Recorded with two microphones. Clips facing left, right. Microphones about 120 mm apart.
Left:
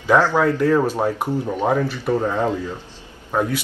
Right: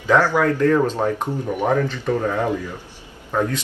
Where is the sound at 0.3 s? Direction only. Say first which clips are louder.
Even; 15° left (ahead or behind).